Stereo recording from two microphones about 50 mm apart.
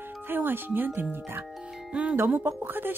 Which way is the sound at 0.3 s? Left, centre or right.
Right.